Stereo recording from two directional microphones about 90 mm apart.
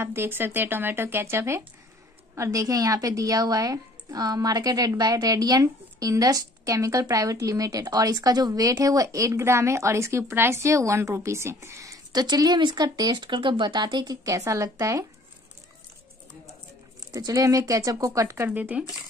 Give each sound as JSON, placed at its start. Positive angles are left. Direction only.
{"t": 0.0, "sound": "a woman's voice", "side_deg": -25}
{"t": 12.1, "sound": "speech", "side_deg": -50}
{"t": 13.8, "sound": "a woman's voice", "side_deg": -45}
{"t": 17.1, "sound": "a woman's voice", "side_deg": -40}
{"t": 18.5, "sound": "speech", "side_deg": -15}